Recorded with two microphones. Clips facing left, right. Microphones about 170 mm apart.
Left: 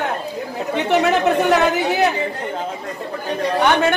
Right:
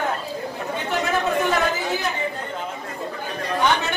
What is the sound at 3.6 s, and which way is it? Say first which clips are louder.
Speech: left 5 dB; 55° left (ahead or behind).